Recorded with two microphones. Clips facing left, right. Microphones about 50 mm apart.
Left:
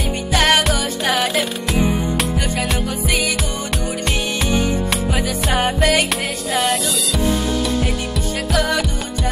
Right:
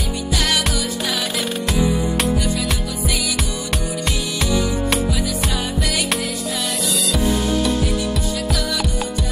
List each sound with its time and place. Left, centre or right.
0.3 s music: left
1.0 s music: left
3.1 s music: left
5.6 s music: left
8.5 s music: left